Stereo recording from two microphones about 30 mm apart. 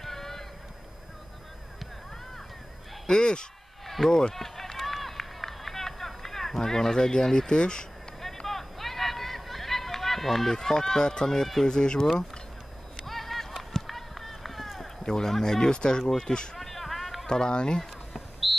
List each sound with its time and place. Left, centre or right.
0.0 s a sound: centre
3.1 s speech: left
3.8 s speech: centre
4.4 s run: centre; by 7.8 s left
8.5 s run: centre
10.5 s speech: centre
13.0 s run: centre
15.0 s speech: left
16.5 s a sound: centre
17.3 s speech: left
18.4 s a sound: centre